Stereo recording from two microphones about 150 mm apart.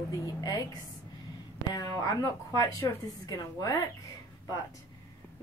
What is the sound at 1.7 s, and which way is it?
A woman's voice, 25° left (ahead or behind).